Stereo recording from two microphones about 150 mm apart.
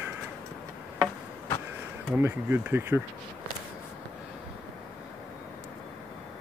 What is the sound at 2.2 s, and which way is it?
Speech, 15° right (ahead or behind).